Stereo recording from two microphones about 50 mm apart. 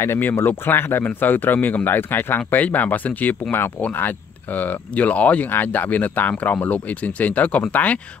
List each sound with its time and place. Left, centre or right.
0.0 s speech: left
0.3 s speech: left
4.9 s speech: left
5.5 s speech: left